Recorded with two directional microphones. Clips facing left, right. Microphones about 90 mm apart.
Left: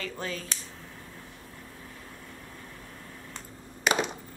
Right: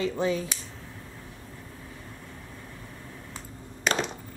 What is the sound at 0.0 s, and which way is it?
Speech, 20° right (ahead or behind).